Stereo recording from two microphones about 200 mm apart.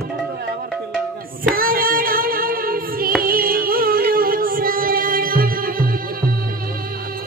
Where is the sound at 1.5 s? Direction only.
45° right (ahead or behind).